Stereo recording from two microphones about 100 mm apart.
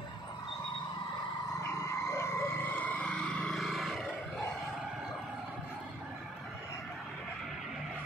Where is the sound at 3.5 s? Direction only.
Centre (ahead or behind).